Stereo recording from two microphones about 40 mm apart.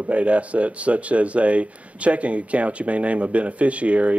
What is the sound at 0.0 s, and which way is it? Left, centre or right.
Speech, right.